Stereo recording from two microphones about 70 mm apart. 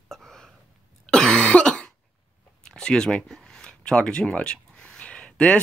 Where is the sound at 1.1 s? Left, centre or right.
Centre.